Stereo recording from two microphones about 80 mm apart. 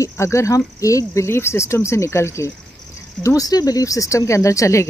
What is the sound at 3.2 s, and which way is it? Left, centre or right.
Speech, left.